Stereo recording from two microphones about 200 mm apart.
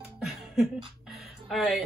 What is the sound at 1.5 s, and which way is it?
Speech, centre (ahead or behind).